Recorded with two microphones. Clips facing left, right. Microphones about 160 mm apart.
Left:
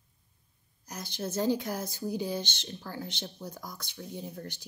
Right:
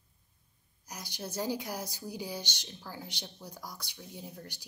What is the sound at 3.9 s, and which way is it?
Speech, 50° left (ahead or behind).